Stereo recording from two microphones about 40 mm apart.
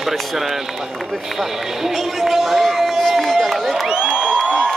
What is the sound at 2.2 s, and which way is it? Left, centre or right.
Run, centre.